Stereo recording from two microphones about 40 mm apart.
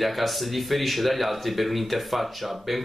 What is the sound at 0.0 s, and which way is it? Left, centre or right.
Speech, centre.